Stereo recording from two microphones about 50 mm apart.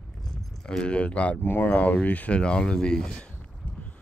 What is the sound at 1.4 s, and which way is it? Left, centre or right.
Speech, left.